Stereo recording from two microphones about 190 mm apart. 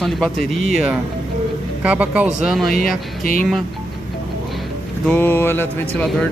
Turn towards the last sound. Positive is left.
turn(degrees=10)  # may be behind; listen again after turning